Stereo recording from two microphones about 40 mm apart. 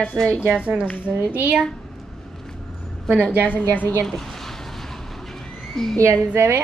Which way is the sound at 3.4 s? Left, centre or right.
Left.